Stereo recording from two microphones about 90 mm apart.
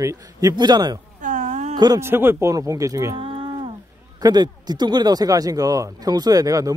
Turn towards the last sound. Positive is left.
turn(degrees=-40)  # may be behind; listen again after turning